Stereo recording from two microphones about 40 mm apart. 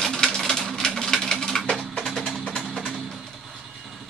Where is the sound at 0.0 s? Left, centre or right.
Centre.